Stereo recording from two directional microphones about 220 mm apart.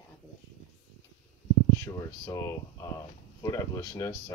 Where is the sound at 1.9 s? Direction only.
15° left (ahead or behind).